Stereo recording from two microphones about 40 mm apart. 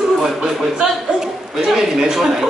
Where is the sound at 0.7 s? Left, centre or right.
Centre.